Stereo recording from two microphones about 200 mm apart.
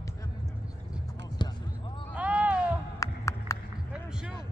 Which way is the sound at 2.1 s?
5° right (ahead or behind).